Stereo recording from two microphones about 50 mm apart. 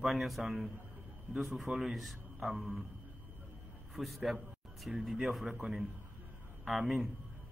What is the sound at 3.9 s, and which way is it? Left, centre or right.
A man's voice, centre.